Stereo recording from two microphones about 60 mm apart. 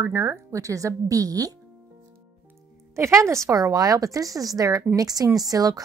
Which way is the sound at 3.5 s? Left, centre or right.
Right.